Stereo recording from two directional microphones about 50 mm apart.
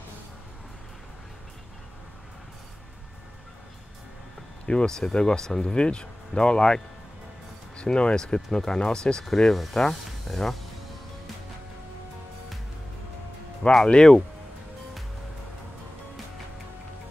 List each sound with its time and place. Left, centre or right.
4.6 s speech: centre
13.6 s speech: centre